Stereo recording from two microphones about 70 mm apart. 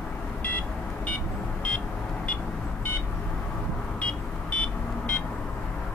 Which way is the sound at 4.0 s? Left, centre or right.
Centre.